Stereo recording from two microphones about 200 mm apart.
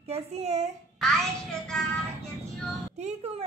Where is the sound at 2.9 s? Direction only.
30° right (ahead or behind).